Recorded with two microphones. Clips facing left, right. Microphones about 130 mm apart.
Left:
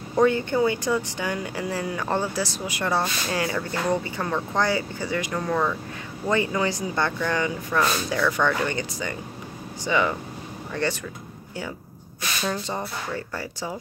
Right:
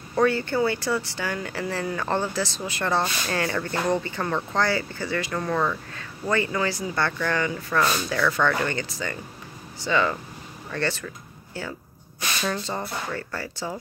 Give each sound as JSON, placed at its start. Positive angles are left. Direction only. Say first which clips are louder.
{"t": 0.1, "sound": "speech", "louder": "left 2 dB", "side_deg": 15}
{"t": 6.2, "sound": "speech", "louder": "left 1 dB", "side_deg": 15}
{"t": 12.4, "sound": "speech", "louder": "left 1 dB", "side_deg": 15}